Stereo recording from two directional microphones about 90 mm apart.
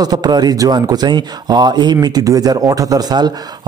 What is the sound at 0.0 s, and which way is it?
Speech, 50° right (ahead or behind).